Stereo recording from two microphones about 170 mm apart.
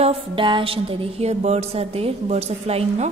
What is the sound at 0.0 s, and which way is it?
Music, 35° right (ahead or behind).